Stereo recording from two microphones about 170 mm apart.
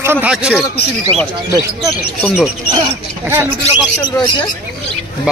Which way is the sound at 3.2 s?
15° right (ahead or behind).